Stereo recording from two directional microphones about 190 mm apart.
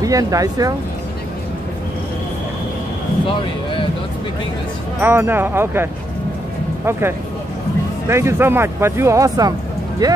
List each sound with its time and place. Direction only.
0.0 s speech: 20° right (ahead or behind)
5.0 s speech: 10° right (ahead or behind)